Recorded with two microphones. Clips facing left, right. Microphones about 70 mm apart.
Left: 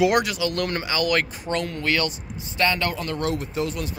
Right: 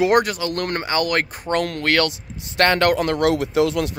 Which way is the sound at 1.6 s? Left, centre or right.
Right.